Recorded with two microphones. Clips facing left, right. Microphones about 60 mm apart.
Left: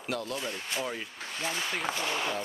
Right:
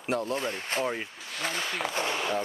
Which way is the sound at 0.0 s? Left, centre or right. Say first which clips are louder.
Right 5 dB; right.